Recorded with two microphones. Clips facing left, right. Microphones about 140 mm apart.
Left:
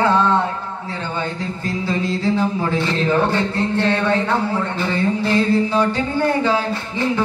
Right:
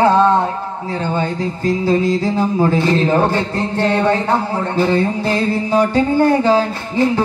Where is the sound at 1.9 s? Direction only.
40° right (ahead or behind).